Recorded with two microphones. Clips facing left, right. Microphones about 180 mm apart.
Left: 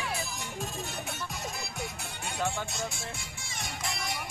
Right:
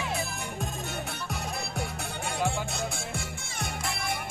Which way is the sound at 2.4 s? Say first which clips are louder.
Right 2 dB; 10° right (ahead or behind).